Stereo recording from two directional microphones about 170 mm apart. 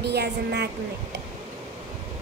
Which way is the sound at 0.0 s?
75° right (ahead or behind).